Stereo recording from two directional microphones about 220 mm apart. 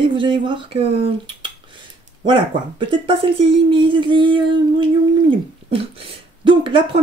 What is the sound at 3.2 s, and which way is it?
Speech, 25° right (ahead or behind).